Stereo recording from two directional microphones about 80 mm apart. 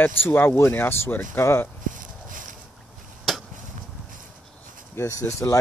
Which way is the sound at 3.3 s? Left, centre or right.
Centre.